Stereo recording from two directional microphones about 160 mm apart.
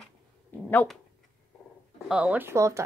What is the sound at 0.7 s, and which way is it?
Speech, 10° left (ahead or behind).